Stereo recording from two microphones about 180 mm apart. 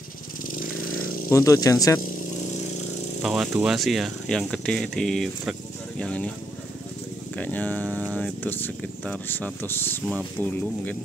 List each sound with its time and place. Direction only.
1.3 s speech: 20° left (ahead or behind)
3.2 s a sound: centre (ahead or behind)
3.5 s speech: centre (ahead or behind)
7.3 s speech: 10° left (ahead or behind)